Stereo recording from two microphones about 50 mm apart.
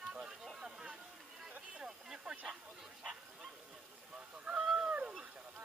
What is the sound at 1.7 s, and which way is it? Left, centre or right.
Speech, centre.